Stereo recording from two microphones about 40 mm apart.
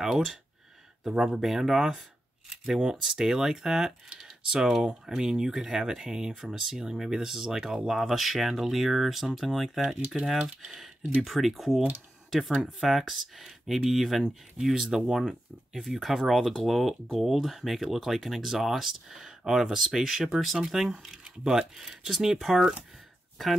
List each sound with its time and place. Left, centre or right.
1.1 s speech: centre